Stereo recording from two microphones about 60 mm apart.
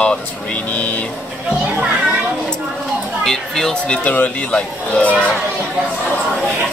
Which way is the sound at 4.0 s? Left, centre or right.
Left.